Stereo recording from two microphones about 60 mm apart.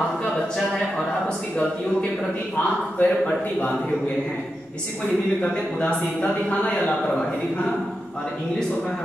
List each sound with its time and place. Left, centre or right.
3.0 s speech: left
5.4 s speech: left